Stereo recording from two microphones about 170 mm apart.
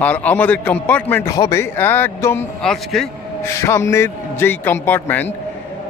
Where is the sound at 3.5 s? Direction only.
15° left (ahead or behind).